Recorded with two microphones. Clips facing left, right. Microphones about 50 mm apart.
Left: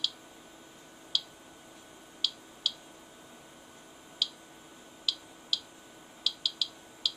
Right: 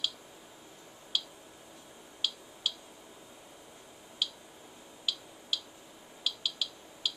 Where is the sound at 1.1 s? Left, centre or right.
Centre.